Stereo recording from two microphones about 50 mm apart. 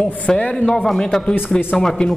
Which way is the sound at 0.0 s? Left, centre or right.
Left.